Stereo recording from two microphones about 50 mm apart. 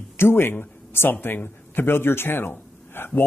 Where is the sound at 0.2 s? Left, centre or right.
Left.